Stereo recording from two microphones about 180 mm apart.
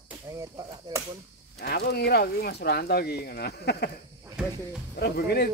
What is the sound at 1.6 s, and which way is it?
Speech, 60° left (ahead or behind).